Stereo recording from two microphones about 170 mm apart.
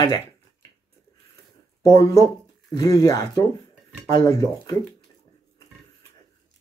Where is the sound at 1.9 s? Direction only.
20° left (ahead or behind).